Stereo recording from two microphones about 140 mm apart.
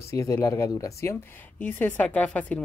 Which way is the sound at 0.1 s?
20° left (ahead or behind).